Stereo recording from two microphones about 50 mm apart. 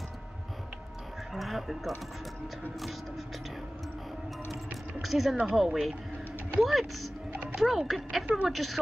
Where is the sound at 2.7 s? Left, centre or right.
Centre.